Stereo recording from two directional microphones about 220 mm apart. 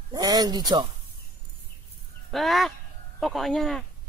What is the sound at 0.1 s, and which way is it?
Speech, 15° right (ahead or behind).